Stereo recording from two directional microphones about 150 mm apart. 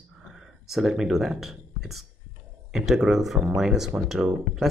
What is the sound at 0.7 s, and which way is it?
Speech, centre (ahead or behind).